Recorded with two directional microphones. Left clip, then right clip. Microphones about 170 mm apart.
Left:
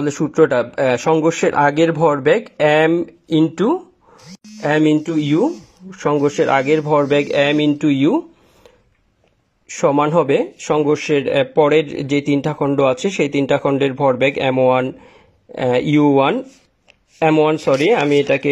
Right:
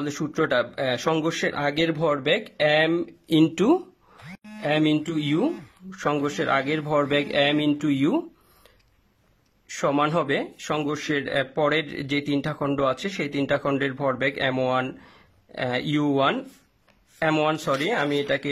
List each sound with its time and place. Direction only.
0.0 s speech: 5° left (ahead or behind)
2.9 s speech: 10° right (ahead or behind)
3.4 s speech: 20° right (ahead or behind)
4.6 s speech: centre (ahead or behind)
9.7 s speech: centre (ahead or behind)